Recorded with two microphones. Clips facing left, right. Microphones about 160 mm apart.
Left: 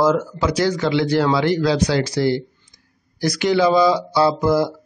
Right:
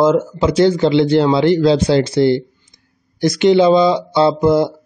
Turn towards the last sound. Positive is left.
turn(degrees=-25)  # may be behind; listen again after turning